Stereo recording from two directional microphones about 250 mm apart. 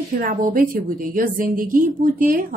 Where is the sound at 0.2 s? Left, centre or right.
Right.